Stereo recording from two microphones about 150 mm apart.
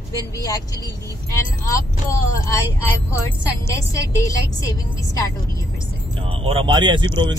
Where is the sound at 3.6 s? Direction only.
20° left (ahead or behind).